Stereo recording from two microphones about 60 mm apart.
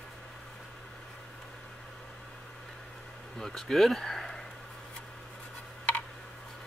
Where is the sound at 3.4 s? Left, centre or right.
Centre.